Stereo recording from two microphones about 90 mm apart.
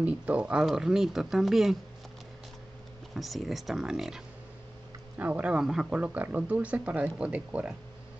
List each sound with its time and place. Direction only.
0.0 s speech: 15° right (ahead or behind)
3.2 s speech: centre (ahead or behind)
5.1 s speech: 20° right (ahead or behind)
5.9 s speech: 15° right (ahead or behind)